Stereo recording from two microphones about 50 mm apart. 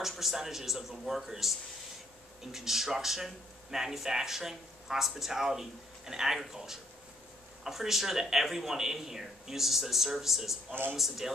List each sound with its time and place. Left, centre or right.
0.0 s speech: centre
10.7 s a man's voice: right
11.0 s speech: centre